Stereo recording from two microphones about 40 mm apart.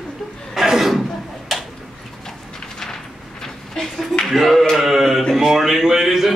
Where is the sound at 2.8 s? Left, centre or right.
Centre.